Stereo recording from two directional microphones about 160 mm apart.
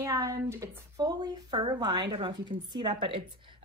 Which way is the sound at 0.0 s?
20° right (ahead or behind).